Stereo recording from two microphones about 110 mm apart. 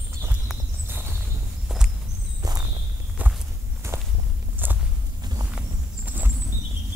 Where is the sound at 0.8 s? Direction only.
20° right (ahead or behind).